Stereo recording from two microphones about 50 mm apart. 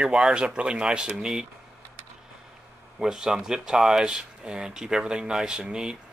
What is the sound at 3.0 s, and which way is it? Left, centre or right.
Speech, centre.